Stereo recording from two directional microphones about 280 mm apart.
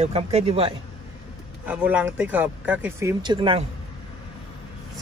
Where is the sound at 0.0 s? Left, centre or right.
Right.